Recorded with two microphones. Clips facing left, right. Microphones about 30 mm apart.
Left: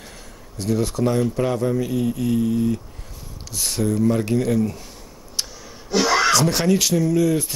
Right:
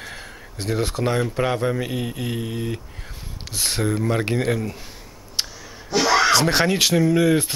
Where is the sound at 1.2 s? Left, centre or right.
Right.